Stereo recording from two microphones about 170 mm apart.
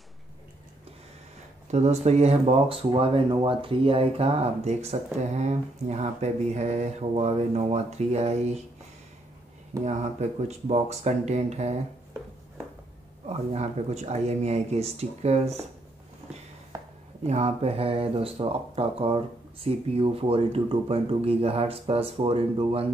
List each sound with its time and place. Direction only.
1.7 s speech: 40° right (ahead or behind)
9.8 s speech: 40° right (ahead or behind)
13.3 s speech: 40° right (ahead or behind)
17.2 s speech: 40° right (ahead or behind)